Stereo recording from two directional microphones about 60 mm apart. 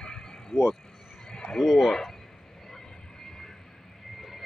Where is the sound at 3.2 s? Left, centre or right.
Centre.